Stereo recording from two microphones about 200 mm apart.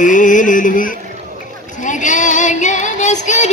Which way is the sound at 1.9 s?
40° left (ahead or behind).